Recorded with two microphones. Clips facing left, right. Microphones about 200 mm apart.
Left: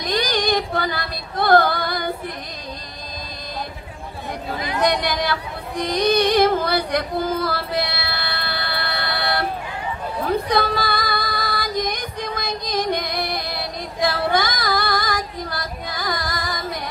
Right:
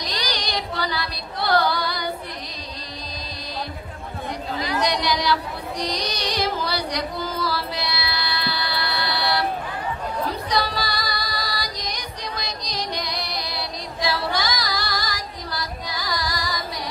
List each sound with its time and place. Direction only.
0.0 s female singing: 50° left (ahead or behind)
4.6 s speech: 55° left (ahead or behind)
10.2 s female singing: 55° left (ahead or behind)